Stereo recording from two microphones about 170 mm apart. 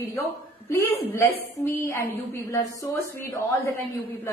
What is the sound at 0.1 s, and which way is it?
A woman's voice, 15° left (ahead or behind).